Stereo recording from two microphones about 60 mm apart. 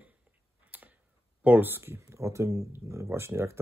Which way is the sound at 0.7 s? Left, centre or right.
Right.